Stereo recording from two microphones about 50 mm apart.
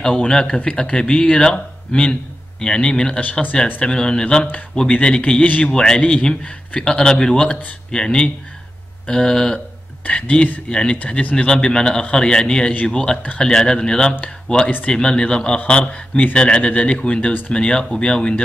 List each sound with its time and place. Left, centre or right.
0.0 s a man's voice: centre
5.7 s a man's voice: centre